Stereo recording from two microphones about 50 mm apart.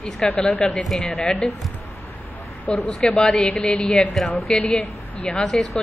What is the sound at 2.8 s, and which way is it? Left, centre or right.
A man's voice, centre.